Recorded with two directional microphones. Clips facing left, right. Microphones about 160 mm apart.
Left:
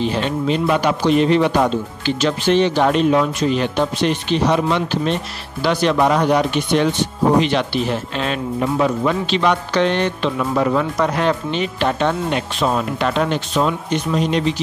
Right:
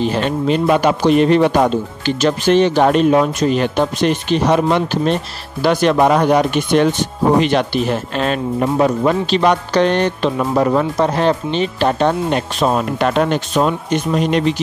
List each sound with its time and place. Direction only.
0.0 s speech: 50° right (ahead or behind)